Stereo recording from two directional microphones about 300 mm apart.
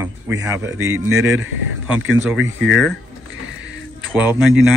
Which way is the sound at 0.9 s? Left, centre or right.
Right.